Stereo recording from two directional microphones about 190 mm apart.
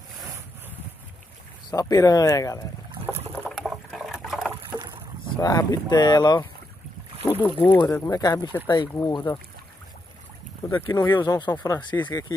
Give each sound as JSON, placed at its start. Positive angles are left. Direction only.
{"t": 1.7, "sound": "speech", "side_deg": 20}
{"t": 3.4, "sound": "liquid", "side_deg": 0}
{"t": 4.7, "sound": "boat", "side_deg": -25}
{"t": 5.3, "sound": "speech", "side_deg": 20}
{"t": 7.2, "sound": "speech", "side_deg": 10}
{"t": 10.7, "sound": "speech", "side_deg": 15}